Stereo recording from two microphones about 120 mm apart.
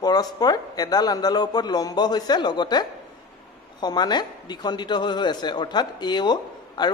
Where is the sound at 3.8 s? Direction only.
35° left (ahead or behind).